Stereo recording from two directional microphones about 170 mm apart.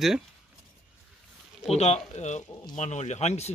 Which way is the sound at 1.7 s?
40° left (ahead or behind).